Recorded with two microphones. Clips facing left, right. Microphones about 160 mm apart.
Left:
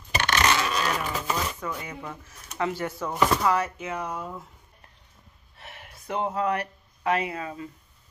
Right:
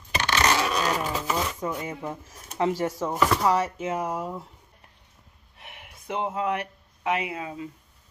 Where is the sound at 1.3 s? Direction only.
25° right (ahead or behind).